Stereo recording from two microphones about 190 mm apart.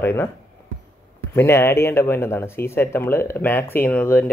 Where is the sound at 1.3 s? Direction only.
15° left (ahead or behind).